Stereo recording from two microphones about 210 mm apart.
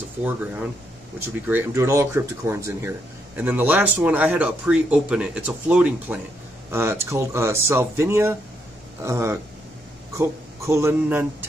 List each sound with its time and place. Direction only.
1.2 s speech: 15° right (ahead or behind)